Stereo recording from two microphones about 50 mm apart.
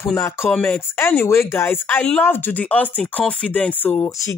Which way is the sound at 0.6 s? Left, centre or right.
Left.